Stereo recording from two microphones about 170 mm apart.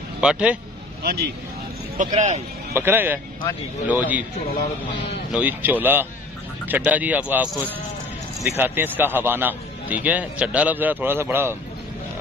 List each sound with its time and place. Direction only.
0.2 s speech: 5° right (ahead or behind)
1.0 s speech: 65° right (ahead or behind)
2.0 s speech: 45° right (ahead or behind)
2.7 s a man's voice: 15° right (ahead or behind)
5.3 s a man's voice: 10° right (ahead or behind)
8.5 s a man's voice: 10° right (ahead or behind)